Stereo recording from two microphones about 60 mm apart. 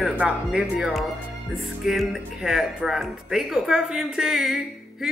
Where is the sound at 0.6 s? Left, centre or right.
Centre.